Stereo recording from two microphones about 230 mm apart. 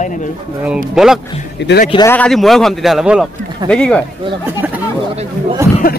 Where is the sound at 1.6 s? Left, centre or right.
Left.